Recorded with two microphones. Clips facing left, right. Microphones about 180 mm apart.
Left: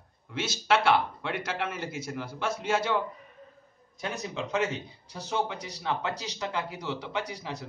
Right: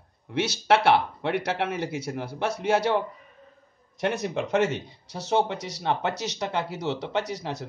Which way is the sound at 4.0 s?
70° right (ahead or behind).